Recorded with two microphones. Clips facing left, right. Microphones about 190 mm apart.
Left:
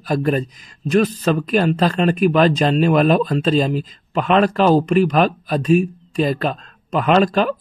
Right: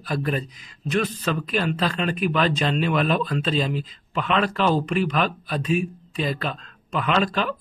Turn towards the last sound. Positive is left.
turn(degrees=45)  # may be behind; listen again after turning